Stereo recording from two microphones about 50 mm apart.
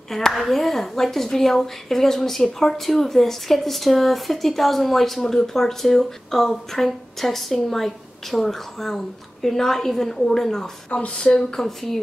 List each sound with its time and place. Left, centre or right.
0.1 s a woman's voice: centre
10.9 s speech: left
11.3 s a woman's voice: centre